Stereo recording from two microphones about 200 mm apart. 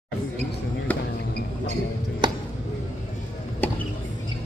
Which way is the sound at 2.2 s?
20° right (ahead or behind).